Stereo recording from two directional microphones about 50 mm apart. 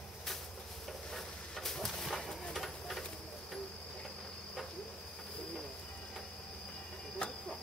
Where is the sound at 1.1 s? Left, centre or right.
Centre.